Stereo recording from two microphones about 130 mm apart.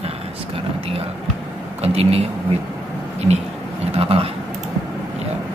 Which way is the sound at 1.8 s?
50° right (ahead or behind).